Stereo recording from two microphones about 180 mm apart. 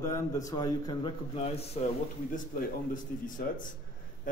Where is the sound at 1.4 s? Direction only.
35° left (ahead or behind).